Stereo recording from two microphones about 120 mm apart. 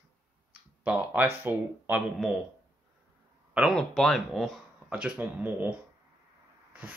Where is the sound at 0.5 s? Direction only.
10° right (ahead or behind).